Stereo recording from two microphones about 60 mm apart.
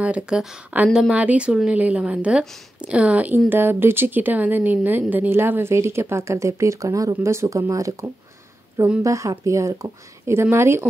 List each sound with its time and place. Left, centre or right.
0.0 s a woman's voice: centre
1.5 s speech: centre
1.8 s a woman's voice: right
3.4 s a woman's voice: right
7.2 s a woman's voice: right
10.3 s speech: right